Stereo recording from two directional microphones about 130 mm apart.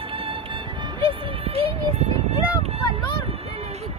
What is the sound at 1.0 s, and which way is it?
Speech, 45° right (ahead or behind).